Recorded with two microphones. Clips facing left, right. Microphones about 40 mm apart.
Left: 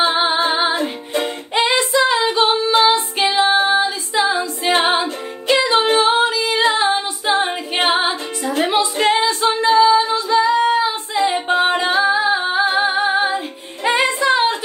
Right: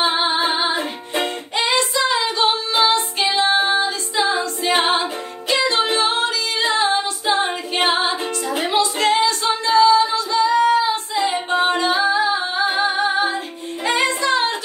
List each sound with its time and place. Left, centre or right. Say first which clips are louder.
0.0 s female singing: left 2 dB; centre
0.7 s music: left 2 dB; centre
1.5 s child singing: left 4 dB; centre
2.4 s female singing: left 4 dB; centre
2.9 s music: left 2 dB; centre
3.7 s female singing: left 3 dB; centre
7.9 s music: left 1 dB; centre
10.1 s singing: left 2 dB; centre
11.7 s female singing: left 2 dB; centre
13.8 s music: left 3 dB; centre